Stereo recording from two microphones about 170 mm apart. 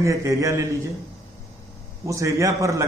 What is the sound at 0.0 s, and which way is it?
Speech, 20° right (ahead or behind).